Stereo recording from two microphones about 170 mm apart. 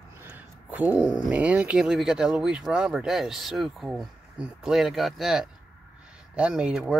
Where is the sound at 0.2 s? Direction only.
10° right (ahead or behind).